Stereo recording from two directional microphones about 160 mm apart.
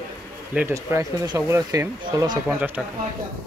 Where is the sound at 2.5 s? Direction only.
10° right (ahead or behind).